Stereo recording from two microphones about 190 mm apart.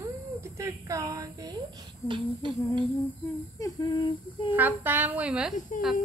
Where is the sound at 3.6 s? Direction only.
20° left (ahead or behind).